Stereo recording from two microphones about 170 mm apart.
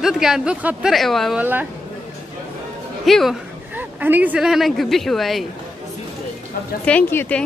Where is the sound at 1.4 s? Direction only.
10° right (ahead or behind).